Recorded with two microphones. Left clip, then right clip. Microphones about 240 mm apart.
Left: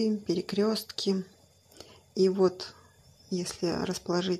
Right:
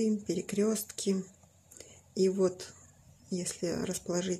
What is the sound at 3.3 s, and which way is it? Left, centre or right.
Speech, centre.